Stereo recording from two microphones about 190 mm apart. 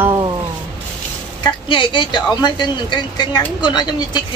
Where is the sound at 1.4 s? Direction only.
25° left (ahead or behind).